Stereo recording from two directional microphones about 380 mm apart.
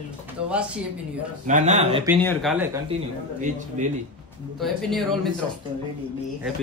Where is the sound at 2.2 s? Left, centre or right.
Centre.